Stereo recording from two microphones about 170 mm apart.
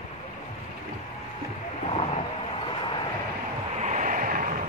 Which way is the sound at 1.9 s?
35° left (ahead or behind).